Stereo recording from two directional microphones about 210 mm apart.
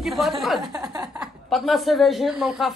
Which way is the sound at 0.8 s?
20° right (ahead or behind).